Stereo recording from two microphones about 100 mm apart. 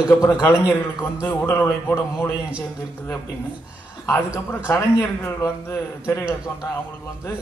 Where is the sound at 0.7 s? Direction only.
20° left (ahead or behind).